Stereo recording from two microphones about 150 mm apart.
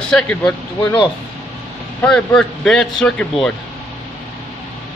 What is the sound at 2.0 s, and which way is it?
A man's voice, 10° left (ahead or behind).